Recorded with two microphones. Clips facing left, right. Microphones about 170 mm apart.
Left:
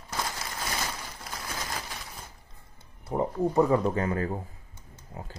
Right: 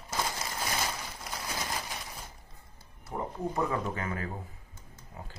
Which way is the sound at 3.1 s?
25° left (ahead or behind).